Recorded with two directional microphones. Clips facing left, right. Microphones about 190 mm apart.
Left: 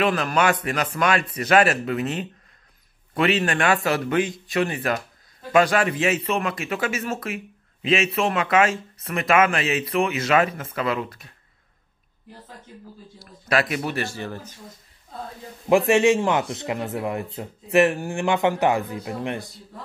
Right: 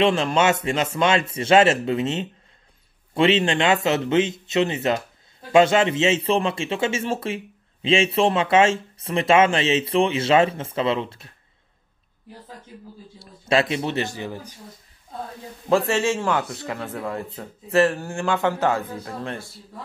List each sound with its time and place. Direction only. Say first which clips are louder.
0.0 s a man's voice: right 2 dB; 25° right (ahead or behind)
13.2 s a man's voice: right 2 dB; 25° right (ahead or behind)
15.9 s speech: left 4 dB; 15° left (ahead or behind)